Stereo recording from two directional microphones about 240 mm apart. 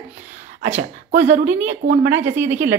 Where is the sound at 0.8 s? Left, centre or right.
Right.